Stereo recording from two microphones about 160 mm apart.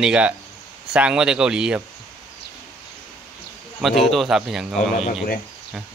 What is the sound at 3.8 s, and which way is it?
Speech, centre (ahead or behind).